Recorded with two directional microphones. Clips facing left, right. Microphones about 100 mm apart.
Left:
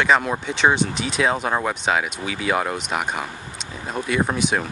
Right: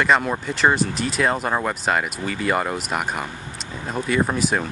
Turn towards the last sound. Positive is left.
turn(degrees=0)  # may be behind; listen again after turning